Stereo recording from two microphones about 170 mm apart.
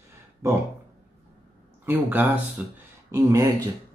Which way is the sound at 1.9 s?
10° right (ahead or behind).